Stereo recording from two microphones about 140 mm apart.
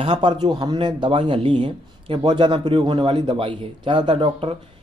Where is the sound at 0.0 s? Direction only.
40° right (ahead or behind).